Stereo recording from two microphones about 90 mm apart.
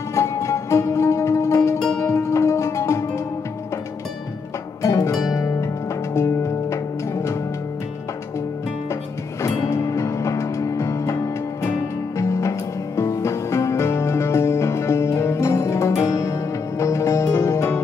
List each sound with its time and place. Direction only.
0.1 s music: 35° left (ahead or behind)
4.8 s music: 35° left (ahead or behind)
5.2 s harp: 40° left (ahead or behind)
6.1 s music: 30° left (ahead or behind)
9.4 s music: 35° left (ahead or behind)
12.2 s music: 35° left (ahead or behind)